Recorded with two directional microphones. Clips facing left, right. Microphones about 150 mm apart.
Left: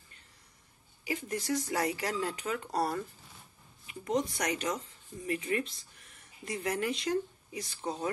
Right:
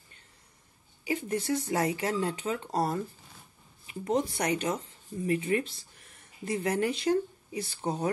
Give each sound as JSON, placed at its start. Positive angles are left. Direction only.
{"t": 1.0, "sound": "speech", "side_deg": -30}